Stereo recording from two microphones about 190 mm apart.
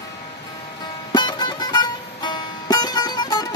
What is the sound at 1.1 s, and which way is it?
Music, 20° left (ahead or behind).